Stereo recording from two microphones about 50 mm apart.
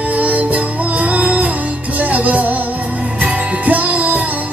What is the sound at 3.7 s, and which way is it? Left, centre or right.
Music, right.